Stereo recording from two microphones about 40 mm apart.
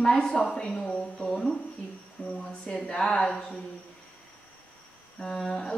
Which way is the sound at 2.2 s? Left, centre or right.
Left.